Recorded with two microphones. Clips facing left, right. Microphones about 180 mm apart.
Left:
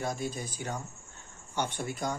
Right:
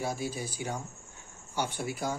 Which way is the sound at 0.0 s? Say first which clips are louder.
Even; 5° right (ahead or behind).